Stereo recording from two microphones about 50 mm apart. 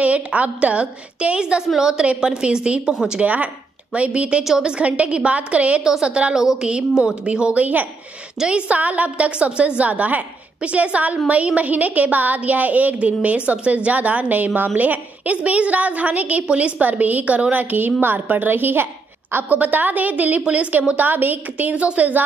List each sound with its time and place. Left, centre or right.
0.0 s a woman's voice: right
1.7 s a woman's voice: centre
4.4 s a woman's voice: centre
5.9 s a woman's voice: centre; by 22.2 s right